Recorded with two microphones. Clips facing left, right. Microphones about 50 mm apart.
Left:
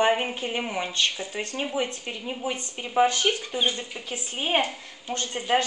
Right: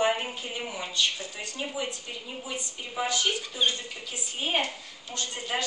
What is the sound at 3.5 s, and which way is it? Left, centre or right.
Speech, centre.